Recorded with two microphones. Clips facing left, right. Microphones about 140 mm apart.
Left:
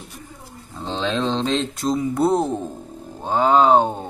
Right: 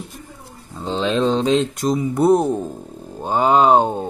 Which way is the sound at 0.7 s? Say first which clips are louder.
Right 4 dB; 5° right (ahead or behind).